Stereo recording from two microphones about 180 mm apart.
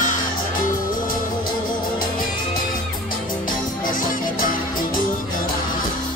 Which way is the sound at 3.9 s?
50° left (ahead or behind).